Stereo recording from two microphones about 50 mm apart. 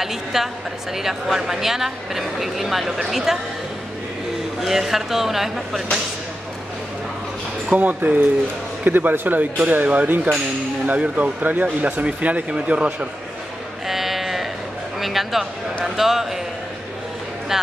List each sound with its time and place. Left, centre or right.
0.0 s a sound: centre
0.9 s speech: centre
4.6 s speech: centre
7.7 s speech: right
10.9 s speech: right
13.8 s sheep: centre
15.0 s a sound: centre